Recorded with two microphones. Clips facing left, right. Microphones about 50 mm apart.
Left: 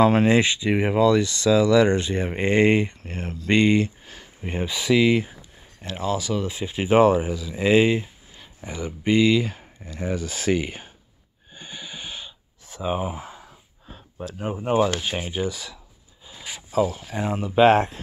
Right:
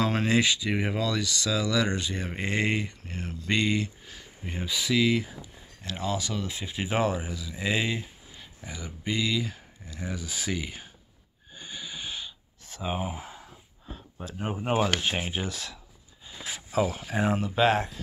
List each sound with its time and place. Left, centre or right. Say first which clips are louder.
0.0 s speech: left 7 dB; left
5.8 s speech: left 5 dB; centre
6.9 s speech: left 11 dB; left
7.2 s speech: left 8 dB; centre
7.5 s speech: left 10 dB; left
8.4 s a sound: left 6 dB; centre
8.7 s speech: left 11 dB; left
10.6 s speech: left 7 dB; left
11.5 s a sound: left 2 dB; left; by 14.2 s centre
14.2 s speech: left 4 dB; centre
15.4 s speech: left 6 dB; centre
16.8 s speech: left 3 dB; centre
17.6 s speech: left 8 dB; left